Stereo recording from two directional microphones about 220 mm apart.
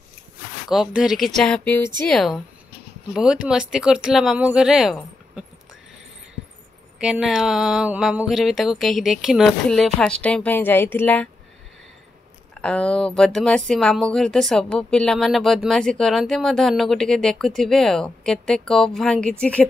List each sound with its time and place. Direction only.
0.7 s speech: centre (ahead or behind)
7.0 s a woman's voice: 5° right (ahead or behind)
12.6 s speech: 5° left (ahead or behind)